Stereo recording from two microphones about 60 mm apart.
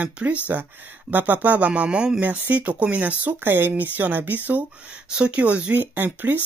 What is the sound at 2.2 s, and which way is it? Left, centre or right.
Speech, right.